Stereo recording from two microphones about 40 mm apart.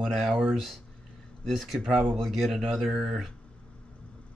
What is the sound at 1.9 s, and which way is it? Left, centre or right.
Speech, centre.